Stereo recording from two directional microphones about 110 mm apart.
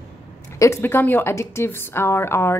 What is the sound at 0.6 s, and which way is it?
A woman's voice, 20° left (ahead or behind).